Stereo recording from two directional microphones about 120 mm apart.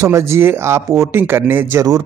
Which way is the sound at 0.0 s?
25° right (ahead or behind).